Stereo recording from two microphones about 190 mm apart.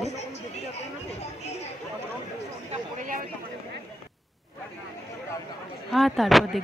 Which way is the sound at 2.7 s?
45° right (ahead or behind).